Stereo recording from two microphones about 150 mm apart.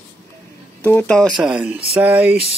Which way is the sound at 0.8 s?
10° left (ahead or behind).